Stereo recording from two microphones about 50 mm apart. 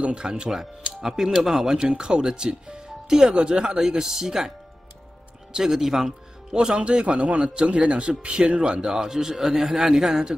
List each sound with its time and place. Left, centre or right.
0.0 s speech: centre
5.5 s speech: centre